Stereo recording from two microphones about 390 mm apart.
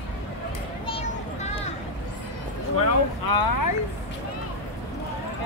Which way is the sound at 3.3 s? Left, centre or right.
Left.